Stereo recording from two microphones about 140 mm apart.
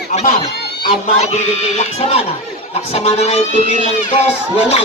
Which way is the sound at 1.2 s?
50° left (ahead or behind).